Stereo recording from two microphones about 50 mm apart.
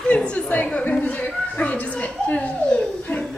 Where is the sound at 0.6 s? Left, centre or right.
Left.